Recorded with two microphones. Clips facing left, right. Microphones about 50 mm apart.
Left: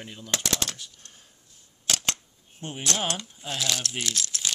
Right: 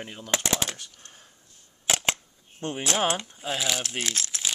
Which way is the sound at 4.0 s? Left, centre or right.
Right.